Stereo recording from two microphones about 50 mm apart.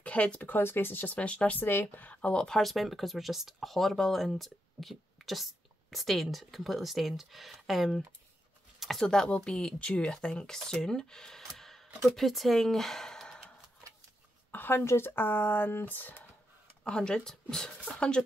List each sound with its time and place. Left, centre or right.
0.0 s speech: left
1.1 s speech: left
1.6 s speech: left
2.2 s speech: centre
8.7 s a sound: centre
9.0 s speech: centre
9.8 s speech: left
10.5 s speech: centre
14.5 s a sound: left
14.9 s speech: left
16.8 s speech: centre